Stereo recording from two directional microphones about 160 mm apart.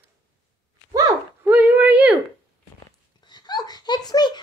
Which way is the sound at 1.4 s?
10° right (ahead or behind).